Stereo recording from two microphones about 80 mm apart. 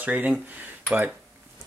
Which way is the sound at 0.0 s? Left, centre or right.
Centre.